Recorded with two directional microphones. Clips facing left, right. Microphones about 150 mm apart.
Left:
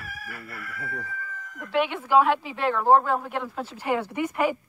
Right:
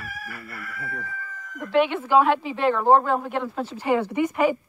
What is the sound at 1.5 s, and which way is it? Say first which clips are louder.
Speech: right 5 dB; 5° left (ahead or behind).